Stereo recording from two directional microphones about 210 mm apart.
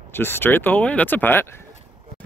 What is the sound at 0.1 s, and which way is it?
Speech, 10° left (ahead or behind).